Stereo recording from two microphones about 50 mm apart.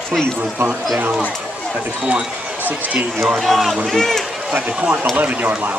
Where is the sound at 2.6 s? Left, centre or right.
Right.